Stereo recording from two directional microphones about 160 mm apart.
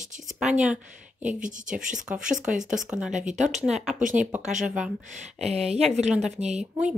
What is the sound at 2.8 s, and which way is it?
Speech, 5° right (ahead or behind).